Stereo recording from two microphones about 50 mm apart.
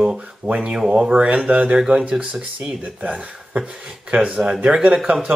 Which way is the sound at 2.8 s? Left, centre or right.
Right.